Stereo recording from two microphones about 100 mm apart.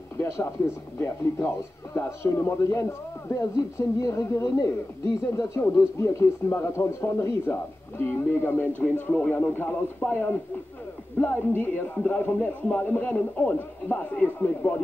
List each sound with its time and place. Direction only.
0.2 s a man's voice: 25° left (ahead or behind)